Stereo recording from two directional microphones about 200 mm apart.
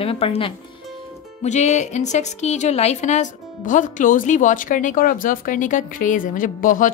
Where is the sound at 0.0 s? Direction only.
30° left (ahead or behind).